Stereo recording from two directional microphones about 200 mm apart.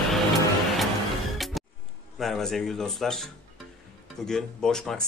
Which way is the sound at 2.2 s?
Centre (ahead or behind).